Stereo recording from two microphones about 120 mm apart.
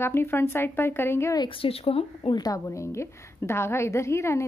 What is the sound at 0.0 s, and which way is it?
A woman's voice, 20° left (ahead or behind).